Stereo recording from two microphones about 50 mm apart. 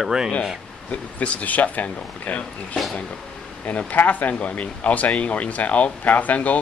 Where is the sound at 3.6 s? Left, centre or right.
Left.